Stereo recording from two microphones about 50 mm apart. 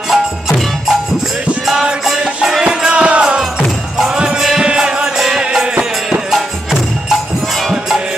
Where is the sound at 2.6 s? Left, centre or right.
Right.